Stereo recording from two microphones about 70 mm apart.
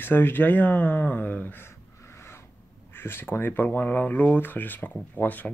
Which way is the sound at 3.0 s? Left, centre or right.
Left.